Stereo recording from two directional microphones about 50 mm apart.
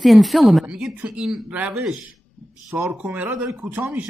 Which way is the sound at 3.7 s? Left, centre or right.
Right.